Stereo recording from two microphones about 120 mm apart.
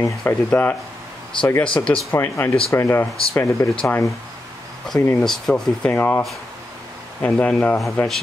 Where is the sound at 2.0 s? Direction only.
20° left (ahead or behind).